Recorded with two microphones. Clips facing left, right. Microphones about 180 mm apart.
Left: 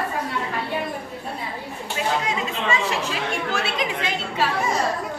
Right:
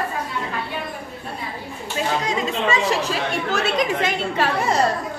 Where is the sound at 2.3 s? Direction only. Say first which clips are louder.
Right 3 dB; 40° right (ahead or behind); by 4.8 s 65° right (ahead or behind).